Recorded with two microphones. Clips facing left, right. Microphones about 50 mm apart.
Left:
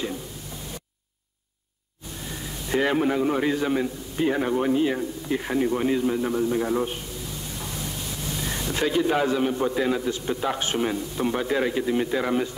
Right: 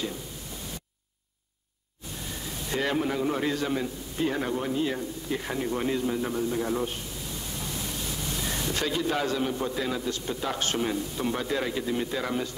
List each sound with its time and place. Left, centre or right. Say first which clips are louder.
2.7 s a man's voice: left 5 dB; centre
8.7 s a man's voice: left 7 dB; centre